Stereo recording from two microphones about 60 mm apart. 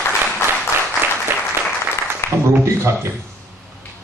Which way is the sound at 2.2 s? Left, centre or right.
Left.